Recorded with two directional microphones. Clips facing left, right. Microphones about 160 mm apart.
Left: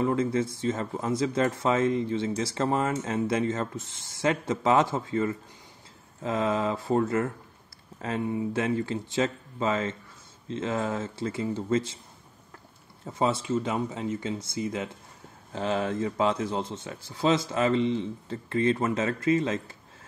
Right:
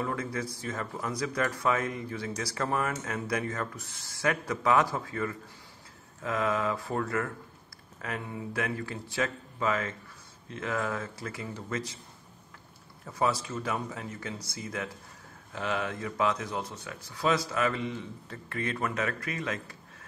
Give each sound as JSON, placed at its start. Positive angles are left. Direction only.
{"t": 0.0, "sound": "speech", "side_deg": 25}
{"t": 13.0, "sound": "speech", "side_deg": 25}